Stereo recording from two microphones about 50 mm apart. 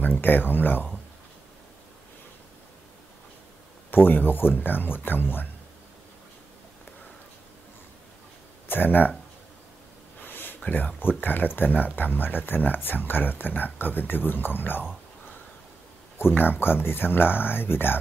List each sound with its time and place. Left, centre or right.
0.0 s speech: left
3.9 s speech: left
8.6 s speech: left
10.2 s a sound: left
11.0 s speech: left
16.2 s speech: left